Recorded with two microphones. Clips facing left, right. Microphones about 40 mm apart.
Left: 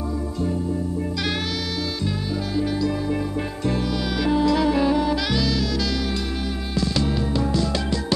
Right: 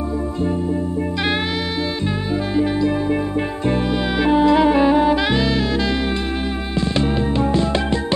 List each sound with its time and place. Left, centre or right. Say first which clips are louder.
2.5 s music: right 5 dB; right